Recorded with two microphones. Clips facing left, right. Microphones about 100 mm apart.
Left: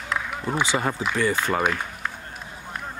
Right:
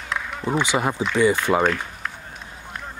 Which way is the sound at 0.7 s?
15° right (ahead or behind).